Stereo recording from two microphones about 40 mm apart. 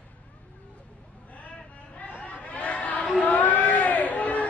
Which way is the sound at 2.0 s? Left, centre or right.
Left.